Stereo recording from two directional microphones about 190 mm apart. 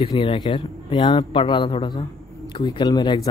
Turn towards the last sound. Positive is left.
turn(degrees=25)  # may be behind; listen again after turning